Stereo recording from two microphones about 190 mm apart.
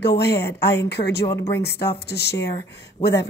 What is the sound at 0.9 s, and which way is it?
Speech, 60° left (ahead or behind).